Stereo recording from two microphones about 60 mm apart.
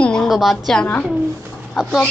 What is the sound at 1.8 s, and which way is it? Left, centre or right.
Speech, centre.